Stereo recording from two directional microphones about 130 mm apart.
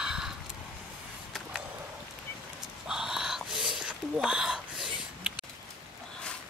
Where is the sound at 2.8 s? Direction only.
5° right (ahead or behind).